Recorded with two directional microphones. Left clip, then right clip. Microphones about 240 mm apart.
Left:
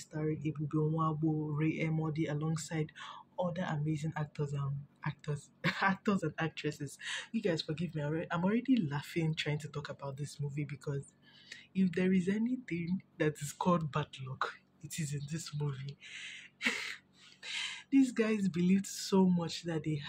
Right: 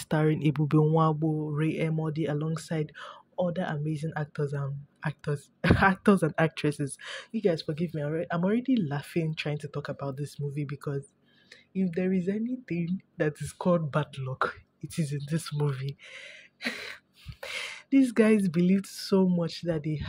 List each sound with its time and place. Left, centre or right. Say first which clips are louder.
0.1 s speech: right 11 dB; right
1.6 s speech: right 6 dB; right